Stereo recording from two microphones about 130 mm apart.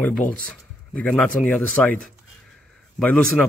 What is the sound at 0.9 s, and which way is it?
Speech, 10° left (ahead or behind).